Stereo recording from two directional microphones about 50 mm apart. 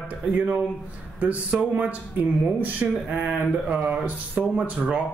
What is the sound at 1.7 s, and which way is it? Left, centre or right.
A man's voice, right.